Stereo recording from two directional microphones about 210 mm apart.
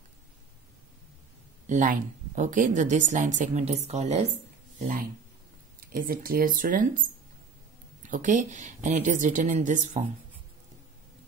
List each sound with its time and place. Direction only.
1.7 s speech: 40° right (ahead or behind)
8.0 s speech: 40° right (ahead or behind)